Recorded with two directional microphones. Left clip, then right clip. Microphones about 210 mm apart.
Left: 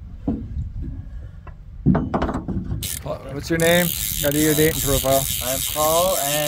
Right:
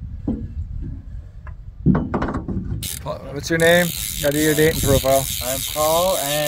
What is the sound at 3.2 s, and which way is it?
Mechanisms, 15° right (ahead or behind).